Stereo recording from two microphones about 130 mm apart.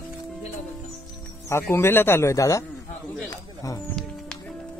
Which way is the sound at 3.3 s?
25° left (ahead or behind).